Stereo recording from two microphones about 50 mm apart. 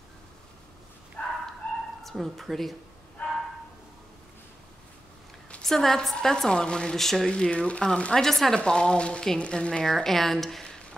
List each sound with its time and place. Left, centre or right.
1.2 s chicken: left
2.0 s speech: centre
3.2 s a sound: left
5.6 s a woman's voice: centre
8.5 s a woman's voice: centre
9.8 s speech: centre